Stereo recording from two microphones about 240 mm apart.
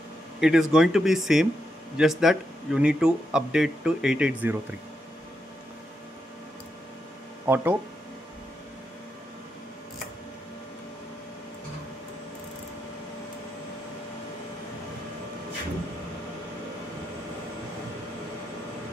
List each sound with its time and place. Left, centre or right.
0.4 s speech: centre
7.4 s speech: centre